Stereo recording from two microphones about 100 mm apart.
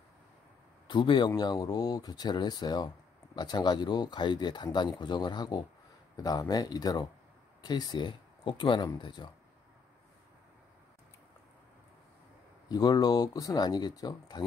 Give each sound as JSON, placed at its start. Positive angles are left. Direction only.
{"t": 0.8, "sound": "speech", "side_deg": 55}
{"t": 1.3, "sound": "speech", "side_deg": 40}
{"t": 12.6, "sound": "speech", "side_deg": 45}